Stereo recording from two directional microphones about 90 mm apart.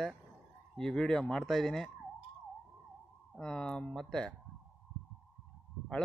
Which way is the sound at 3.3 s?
10° left (ahead or behind).